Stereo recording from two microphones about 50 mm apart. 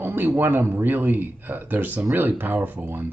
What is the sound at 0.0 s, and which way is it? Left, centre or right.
A man's voice, right.